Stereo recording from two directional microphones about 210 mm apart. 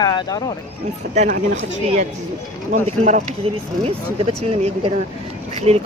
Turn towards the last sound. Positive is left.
turn(degrees=-30)  # may be behind; listen again after turning